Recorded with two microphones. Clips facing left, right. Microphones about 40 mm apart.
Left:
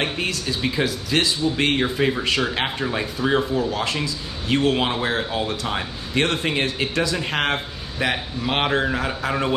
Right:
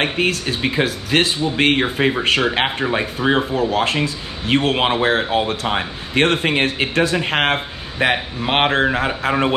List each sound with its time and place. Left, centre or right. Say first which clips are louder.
0.0 s a man's voice: right 5 dB; right